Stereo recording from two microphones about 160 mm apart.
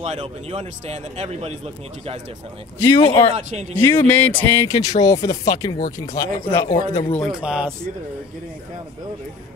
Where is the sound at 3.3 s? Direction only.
45° right (ahead or behind).